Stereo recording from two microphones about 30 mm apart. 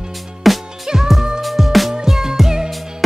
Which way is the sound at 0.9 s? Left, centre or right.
Right.